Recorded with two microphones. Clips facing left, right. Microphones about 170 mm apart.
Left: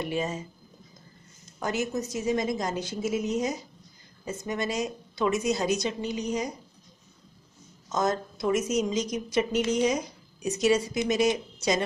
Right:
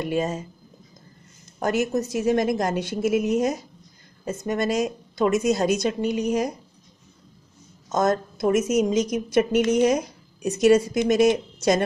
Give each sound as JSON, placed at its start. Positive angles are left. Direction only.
{"t": 0.0, "sound": "a woman's voice", "side_deg": -45}
{"t": 1.6, "sound": "a woman's voice", "side_deg": -55}
{"t": 7.9, "sound": "a woman's voice", "side_deg": -50}